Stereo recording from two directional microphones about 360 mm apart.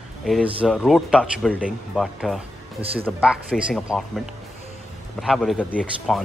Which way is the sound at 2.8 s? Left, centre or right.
Centre.